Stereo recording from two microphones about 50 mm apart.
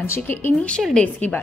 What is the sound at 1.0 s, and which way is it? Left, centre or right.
Speech, left.